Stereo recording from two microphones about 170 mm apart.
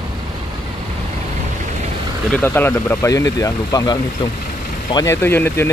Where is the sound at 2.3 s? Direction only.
10° left (ahead or behind).